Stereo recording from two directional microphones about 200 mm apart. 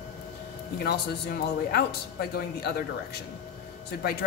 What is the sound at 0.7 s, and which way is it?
A woman's voice, 50° left (ahead or behind).